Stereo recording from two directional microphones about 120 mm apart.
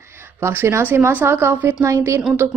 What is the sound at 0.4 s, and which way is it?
A woman's voice, 20° right (ahead or behind).